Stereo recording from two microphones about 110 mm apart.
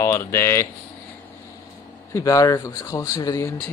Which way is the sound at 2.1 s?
30° left (ahead or behind).